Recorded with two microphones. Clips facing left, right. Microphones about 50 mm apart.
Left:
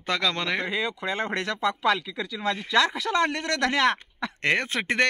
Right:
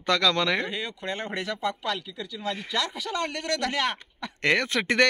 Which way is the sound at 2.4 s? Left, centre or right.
Left.